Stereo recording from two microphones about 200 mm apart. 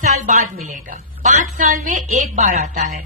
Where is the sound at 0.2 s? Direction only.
40° right (ahead or behind).